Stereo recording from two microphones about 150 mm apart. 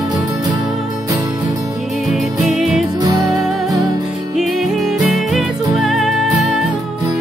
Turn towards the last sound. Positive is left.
turn(degrees=0)  # may be behind; listen again after turning